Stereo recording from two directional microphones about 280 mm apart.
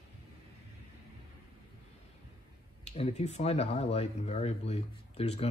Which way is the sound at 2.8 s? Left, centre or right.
Left.